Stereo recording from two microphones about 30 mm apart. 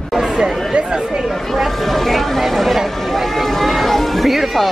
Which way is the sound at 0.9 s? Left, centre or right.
Centre.